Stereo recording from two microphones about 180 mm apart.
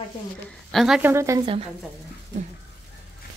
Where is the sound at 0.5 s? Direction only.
Centre (ahead or behind).